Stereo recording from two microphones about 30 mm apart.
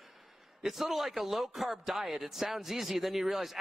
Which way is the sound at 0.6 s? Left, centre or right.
Centre.